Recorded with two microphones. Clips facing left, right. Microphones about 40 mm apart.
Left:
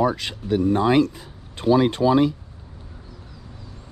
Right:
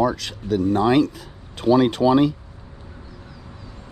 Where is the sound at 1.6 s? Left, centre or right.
Right.